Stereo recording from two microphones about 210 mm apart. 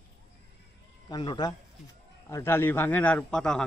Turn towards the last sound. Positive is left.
turn(degrees=5)  # may be behind; listen again after turning